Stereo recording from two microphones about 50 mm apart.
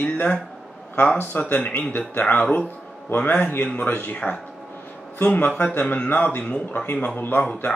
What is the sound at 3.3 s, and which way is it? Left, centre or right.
Speech, left.